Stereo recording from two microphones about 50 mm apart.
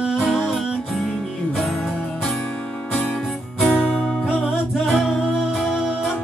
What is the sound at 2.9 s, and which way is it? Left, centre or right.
Music, left.